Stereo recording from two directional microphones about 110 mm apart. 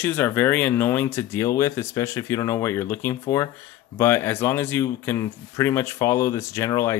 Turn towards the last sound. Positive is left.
turn(degrees=25)  # may be behind; listen again after turning